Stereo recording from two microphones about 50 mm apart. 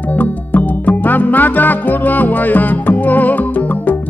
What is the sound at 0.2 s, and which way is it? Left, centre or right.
Music, left.